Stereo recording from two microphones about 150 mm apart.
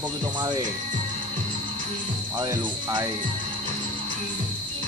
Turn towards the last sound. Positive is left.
turn(degrees=-30)  # may be behind; listen again after turning